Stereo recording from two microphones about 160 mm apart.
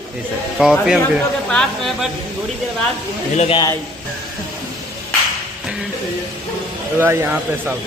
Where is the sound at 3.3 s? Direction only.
40° left (ahead or behind).